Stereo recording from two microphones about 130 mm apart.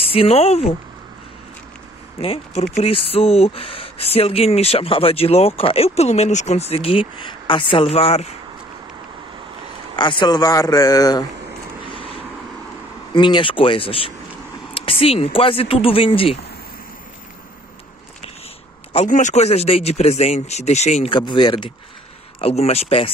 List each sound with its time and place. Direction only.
0.0 s speech: 45° left (ahead or behind)
2.1 s speech: 50° left (ahead or behind)
9.9 s a man's voice: 35° left (ahead or behind)
11.9 s vehicle: 45° left (ahead or behind)
13.1 s speech: 40° left (ahead or behind)
19.0 s speech: 70° left (ahead or behind)
21.1 s speech: 35° left (ahead or behind)
22.4 s speech: 50° left (ahead or behind)